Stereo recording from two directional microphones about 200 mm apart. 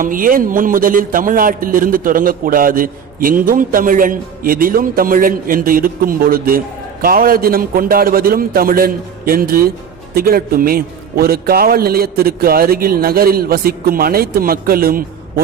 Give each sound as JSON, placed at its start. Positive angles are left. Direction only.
{"t": 0.0, "sound": "a man's voice", "side_deg": -45}